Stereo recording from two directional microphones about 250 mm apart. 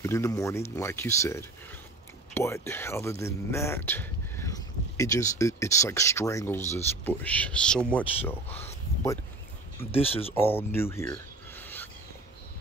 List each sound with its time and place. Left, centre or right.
0.0 s speech: centre
9.8 s speech: left
10.3 s a sound: centre